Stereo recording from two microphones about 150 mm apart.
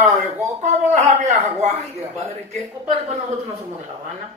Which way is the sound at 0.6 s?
50° right (ahead or behind).